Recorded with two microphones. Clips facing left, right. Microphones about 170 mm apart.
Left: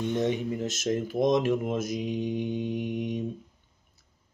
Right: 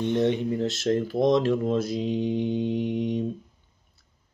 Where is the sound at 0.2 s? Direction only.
15° left (ahead or behind).